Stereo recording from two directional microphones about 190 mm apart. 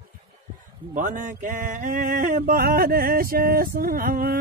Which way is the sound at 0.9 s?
45° right (ahead or behind).